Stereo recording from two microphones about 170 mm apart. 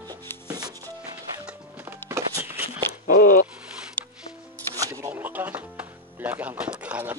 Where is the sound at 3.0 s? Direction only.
55° left (ahead or behind).